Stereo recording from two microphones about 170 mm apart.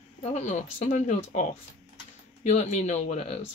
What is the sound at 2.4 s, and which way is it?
Speech, 45° left (ahead or behind).